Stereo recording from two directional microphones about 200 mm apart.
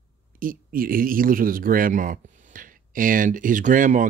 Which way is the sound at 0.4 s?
45° right (ahead or behind).